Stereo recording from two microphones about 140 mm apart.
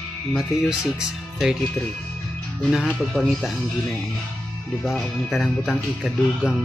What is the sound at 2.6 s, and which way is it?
Speech, centre (ahead or behind).